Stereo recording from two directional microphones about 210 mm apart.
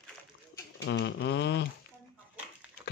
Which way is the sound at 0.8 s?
55° left (ahead or behind).